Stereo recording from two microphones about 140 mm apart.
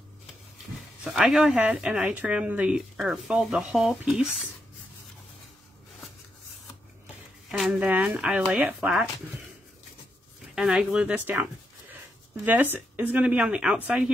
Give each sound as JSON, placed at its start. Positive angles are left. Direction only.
{"t": 1.0, "sound": "speech", "side_deg": -5}
{"t": 7.5, "sound": "a woman's voice", "side_deg": -5}
{"t": 10.5, "sound": "a woman's voice", "side_deg": -5}
{"t": 12.7, "sound": "a woman's voice", "side_deg": -15}